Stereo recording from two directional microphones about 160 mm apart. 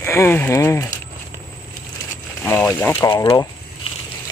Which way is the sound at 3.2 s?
30° left (ahead or behind).